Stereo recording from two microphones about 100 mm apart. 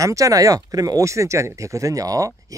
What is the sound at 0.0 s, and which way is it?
Speech, 35° right (ahead or behind).